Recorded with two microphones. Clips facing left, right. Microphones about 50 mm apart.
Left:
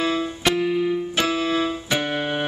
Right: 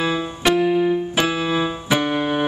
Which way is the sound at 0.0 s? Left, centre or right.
Centre.